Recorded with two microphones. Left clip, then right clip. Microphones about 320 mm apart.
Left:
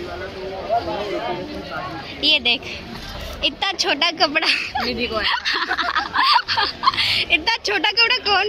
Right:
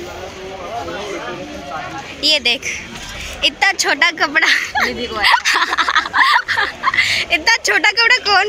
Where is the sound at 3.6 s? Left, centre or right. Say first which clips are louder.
Right 6 dB; centre.